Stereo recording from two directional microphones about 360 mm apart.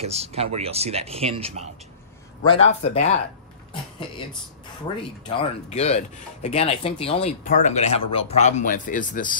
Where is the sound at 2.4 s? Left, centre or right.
Centre.